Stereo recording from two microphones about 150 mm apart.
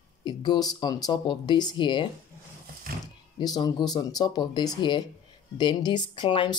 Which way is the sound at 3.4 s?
25° left (ahead or behind).